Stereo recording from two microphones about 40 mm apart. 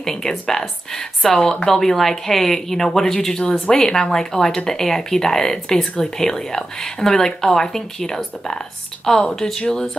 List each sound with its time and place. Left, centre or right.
0.0 s speech: centre
1.4 s speech: left
1.7 s speech: centre